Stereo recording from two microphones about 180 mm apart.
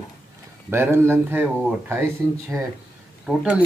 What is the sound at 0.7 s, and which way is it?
Speech, 15° right (ahead or behind).